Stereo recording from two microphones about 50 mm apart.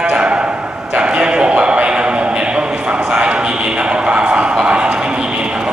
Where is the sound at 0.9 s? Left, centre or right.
Right.